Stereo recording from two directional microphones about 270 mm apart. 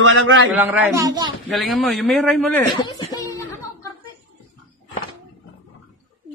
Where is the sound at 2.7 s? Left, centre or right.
Centre.